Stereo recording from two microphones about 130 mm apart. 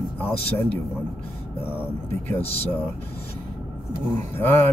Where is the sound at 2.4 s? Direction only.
50° left (ahead or behind).